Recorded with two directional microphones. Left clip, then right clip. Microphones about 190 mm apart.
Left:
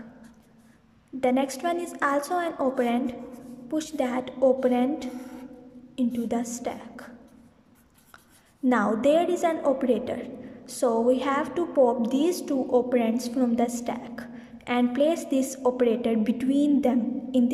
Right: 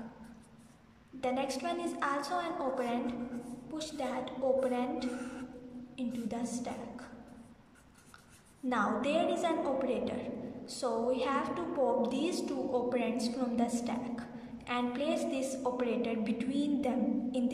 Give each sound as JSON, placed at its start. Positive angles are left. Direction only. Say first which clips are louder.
{"t": 1.2, "sound": "a woman's voice", "louder": "left 9 dB", "side_deg": 35}
{"t": 8.6, "sound": "a woman's voice", "louder": "left 10 dB", "side_deg": 35}